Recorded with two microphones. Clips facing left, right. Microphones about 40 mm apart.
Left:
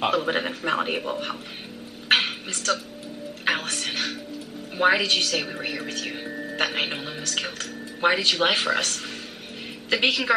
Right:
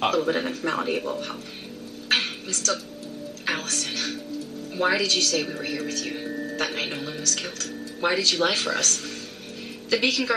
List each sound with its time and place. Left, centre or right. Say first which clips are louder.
0.1 s speech: even; left
2.0 s a sound: left 3 dB; left
3.4 s speech: left 3 dB; left
6.2 s music: right 2 dB; centre
6.5 s speech: left 4 dB; left